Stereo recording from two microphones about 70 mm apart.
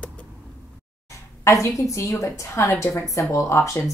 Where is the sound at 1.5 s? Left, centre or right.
Left.